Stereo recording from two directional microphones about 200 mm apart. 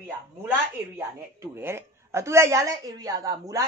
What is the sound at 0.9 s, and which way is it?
A woman's voice, 15° right (ahead or behind).